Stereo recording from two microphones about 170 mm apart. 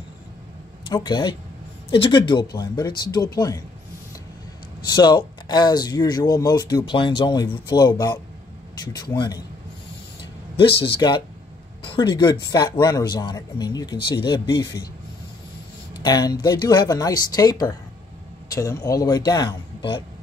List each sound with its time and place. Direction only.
0.8 s speech: 25° left (ahead or behind)
4.8 s speech: 25° left (ahead or behind)
10.5 s speech: 30° left (ahead or behind)
16.0 s speech: 25° left (ahead or behind)